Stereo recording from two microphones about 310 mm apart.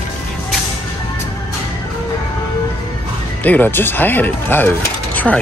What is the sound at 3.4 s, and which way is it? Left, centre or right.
Speech, centre.